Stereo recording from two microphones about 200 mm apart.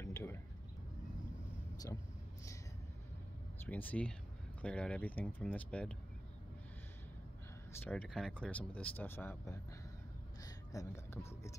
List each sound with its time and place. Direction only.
0.0 s a sound: 15° left (ahead or behind)
3.6 s speech: 10° left (ahead or behind)
7.8 s speech: 5° left (ahead or behind)